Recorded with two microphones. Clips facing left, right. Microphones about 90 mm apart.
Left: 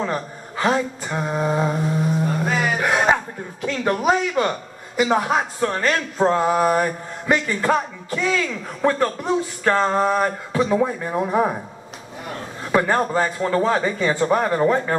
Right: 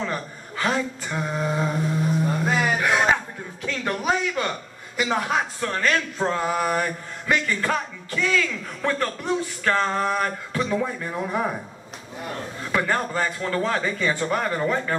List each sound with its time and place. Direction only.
0.0 s mantra: 20° left (ahead or behind)
2.2 s music: centre (ahead or behind)
2.8 s music: 15° left (ahead or behind)
4.0 s speech: 20° left (ahead or behind)
12.6 s speech: 20° left (ahead or behind)